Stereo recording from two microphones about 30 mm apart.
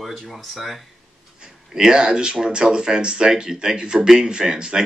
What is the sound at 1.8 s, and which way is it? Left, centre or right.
Speech, right.